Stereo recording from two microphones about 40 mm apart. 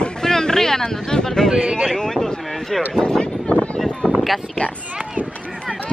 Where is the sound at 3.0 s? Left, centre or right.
Left.